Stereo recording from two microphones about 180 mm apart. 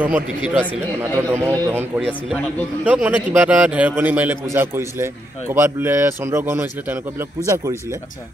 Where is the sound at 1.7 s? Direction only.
10° right (ahead or behind).